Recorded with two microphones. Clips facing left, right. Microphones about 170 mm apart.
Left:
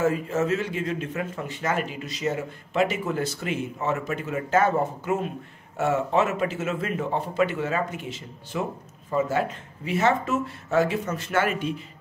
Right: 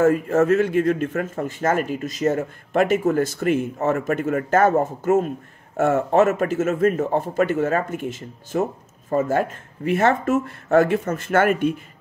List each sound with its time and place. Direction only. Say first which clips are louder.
0.0 s a man's voice: right 7 dB; 50° right (ahead or behind)